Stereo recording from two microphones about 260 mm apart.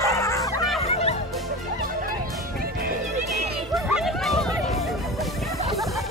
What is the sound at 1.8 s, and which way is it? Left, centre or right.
Music, right.